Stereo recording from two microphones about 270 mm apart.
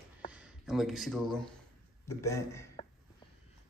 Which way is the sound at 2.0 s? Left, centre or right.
Centre.